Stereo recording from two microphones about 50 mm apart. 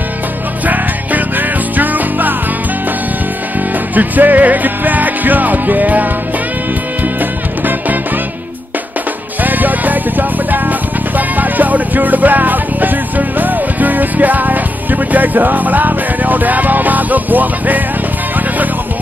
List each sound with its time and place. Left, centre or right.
0.7 s music: right
3.9 s music: right
7.2 s music: right
9.4 s music: right